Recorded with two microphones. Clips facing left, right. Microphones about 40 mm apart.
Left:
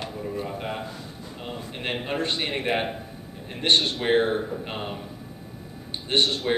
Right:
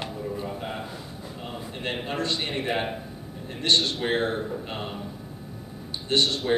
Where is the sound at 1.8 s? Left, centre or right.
Centre.